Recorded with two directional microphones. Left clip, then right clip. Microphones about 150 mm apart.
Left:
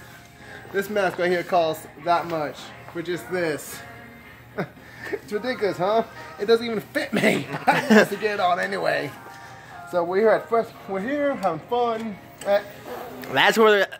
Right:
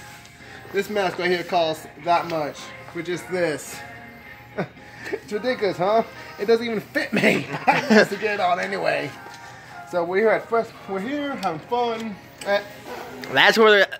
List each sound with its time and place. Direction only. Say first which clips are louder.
0.7 s speech: even; 5° right (ahead or behind)
2.0 s speech: right 1 dB; 20° right (ahead or behind)
3.0 s speech: right 2 dB; 30° right (ahead or behind)
5.3 s speech: right 2 dB; 35° right (ahead or behind); by 7.4 s 20° right (ahead or behind)
7.7 s speech: even; 15° left (ahead or behind)
8.2 s speech: even; 5° right (ahead or behind)